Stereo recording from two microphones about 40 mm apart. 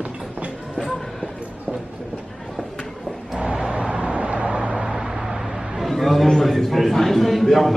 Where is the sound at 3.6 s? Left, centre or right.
Right.